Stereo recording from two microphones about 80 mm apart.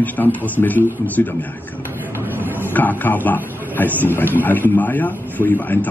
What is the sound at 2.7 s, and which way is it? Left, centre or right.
Speech, left.